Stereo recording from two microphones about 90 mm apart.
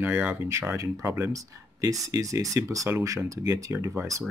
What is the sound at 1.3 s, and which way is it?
Speech, 40° right (ahead or behind).